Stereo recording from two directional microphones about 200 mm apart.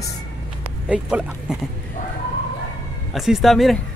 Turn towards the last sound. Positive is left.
turn(degrees=0)  # may be behind; listen again after turning